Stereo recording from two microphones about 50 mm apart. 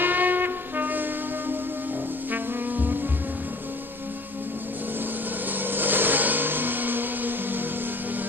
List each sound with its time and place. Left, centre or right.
0.0 s music: right
2.3 s music: right
5.5 s vehicle: right